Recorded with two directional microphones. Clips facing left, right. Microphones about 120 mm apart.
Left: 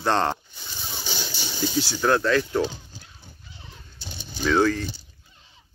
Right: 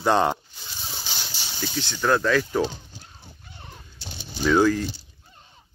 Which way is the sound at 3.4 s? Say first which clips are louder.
Right 3 dB; 50° right (ahead or behind).